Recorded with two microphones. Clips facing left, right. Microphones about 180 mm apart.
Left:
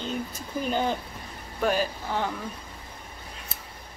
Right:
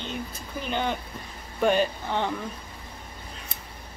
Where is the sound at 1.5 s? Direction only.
5° left (ahead or behind).